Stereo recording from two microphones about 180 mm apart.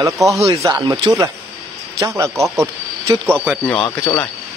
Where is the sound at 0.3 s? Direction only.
15° right (ahead or behind).